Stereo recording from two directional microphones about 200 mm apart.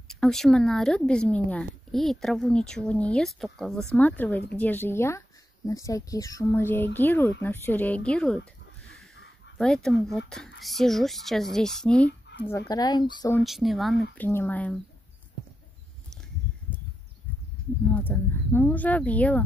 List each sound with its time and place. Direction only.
0.1 s speech: centre (ahead or behind)
8.4 s a sound: 90° left
9.6 s speech: centre (ahead or behind)
12.4 s speech: 15° left (ahead or behind)
13.4 s speech: centre (ahead or behind)
17.9 s speech: 10° left (ahead or behind)